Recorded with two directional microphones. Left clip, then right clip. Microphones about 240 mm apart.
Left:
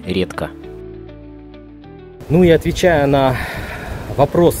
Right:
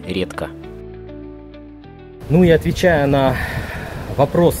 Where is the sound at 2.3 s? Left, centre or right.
Centre.